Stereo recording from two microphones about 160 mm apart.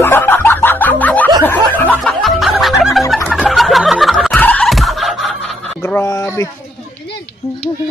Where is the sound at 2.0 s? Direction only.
Centre (ahead or behind).